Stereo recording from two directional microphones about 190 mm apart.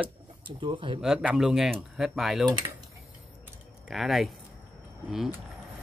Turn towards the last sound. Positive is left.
turn(degrees=0)  # may be behind; listen again after turning